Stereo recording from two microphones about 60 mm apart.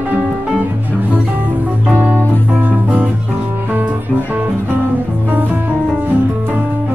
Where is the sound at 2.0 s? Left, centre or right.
Right.